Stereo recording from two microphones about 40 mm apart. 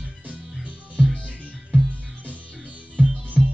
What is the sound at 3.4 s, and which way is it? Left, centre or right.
Music, centre.